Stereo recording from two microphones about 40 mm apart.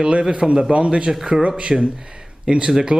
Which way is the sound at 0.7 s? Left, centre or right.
Right.